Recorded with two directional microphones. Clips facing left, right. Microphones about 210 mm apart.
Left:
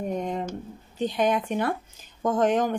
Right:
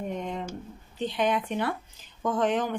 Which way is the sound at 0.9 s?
45° left (ahead or behind).